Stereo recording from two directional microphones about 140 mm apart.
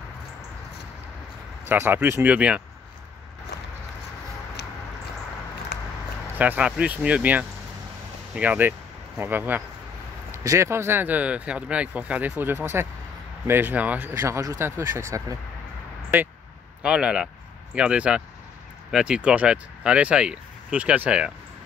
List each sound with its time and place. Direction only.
1.7 s speech: 15° right (ahead or behind)
6.3 s speech: 10° right (ahead or behind)
16.8 s speech: 5° right (ahead or behind)